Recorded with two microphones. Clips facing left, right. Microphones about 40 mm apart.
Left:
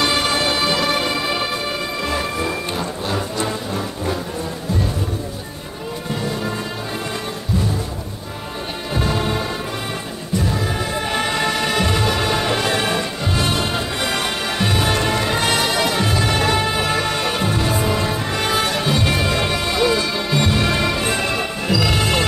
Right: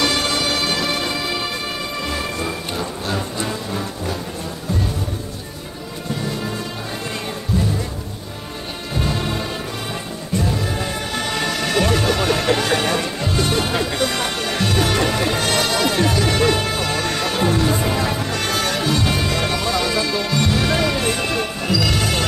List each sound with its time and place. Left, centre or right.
0.0 s music: centre
9.0 s thunder: centre
11.1 s music: centre
17.6 s music: centre